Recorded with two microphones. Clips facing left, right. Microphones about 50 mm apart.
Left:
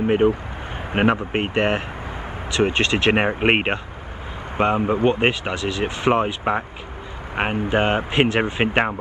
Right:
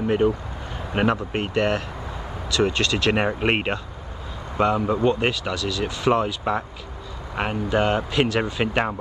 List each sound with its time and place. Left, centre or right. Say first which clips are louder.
0.0 s speech: left 3 dB; left